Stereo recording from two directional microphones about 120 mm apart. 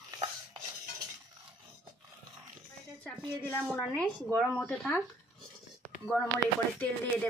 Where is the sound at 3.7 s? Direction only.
5° left (ahead or behind).